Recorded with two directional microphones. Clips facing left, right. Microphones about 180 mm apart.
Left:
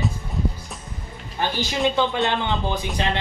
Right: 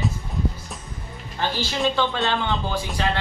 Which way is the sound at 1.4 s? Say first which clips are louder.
Left 1 dB; 20° left (ahead or behind).